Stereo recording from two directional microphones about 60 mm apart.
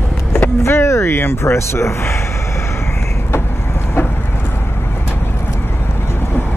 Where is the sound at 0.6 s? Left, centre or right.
Left.